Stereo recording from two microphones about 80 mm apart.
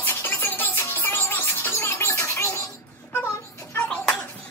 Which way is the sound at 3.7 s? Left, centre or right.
Centre.